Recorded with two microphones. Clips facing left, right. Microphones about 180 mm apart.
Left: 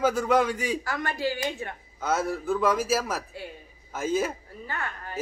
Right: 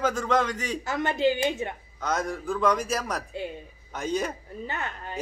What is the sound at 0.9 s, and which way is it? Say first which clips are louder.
Speech: right 5 dB; 20° right (ahead or behind).